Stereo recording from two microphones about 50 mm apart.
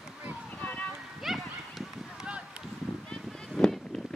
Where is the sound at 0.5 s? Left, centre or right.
Left.